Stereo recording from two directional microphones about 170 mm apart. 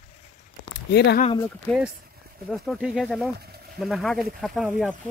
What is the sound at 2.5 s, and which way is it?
Speech, centre (ahead or behind).